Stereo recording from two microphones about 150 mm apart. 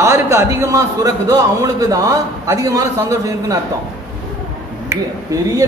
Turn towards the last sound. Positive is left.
turn(degrees=-20)  # may be behind; listen again after turning